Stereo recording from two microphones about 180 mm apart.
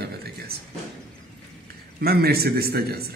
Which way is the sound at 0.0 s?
60° right (ahead or behind).